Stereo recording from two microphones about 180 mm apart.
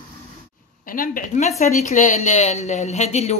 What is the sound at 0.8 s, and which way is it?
Speech, 50° left (ahead or behind).